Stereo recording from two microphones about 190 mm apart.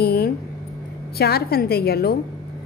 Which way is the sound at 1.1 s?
55° left (ahead or behind).